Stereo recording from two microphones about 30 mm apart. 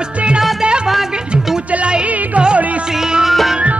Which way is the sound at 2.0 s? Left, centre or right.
Right.